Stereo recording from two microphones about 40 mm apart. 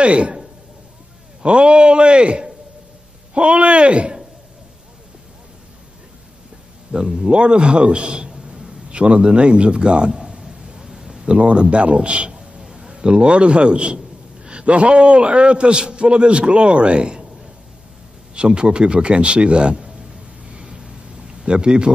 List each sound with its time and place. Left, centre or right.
0.0 s a man's voice: right
1.4 s a man's voice: right
6.9 s a man's voice: centre
10.8 s a sound: centre
11.3 s a man's voice: right
18.3 s a sound: right